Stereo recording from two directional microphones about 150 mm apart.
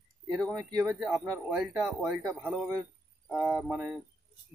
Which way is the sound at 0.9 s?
Centre (ahead or behind).